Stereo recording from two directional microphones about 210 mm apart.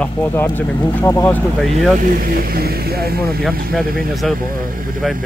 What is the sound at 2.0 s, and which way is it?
Speech, 45° right (ahead or behind).